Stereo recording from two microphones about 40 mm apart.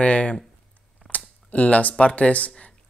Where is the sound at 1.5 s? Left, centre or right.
Left.